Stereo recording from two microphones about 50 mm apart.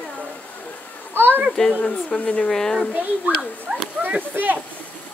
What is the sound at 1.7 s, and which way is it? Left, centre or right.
Speech, left.